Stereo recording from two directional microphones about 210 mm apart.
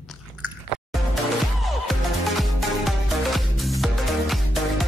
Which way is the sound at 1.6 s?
Centre (ahead or behind).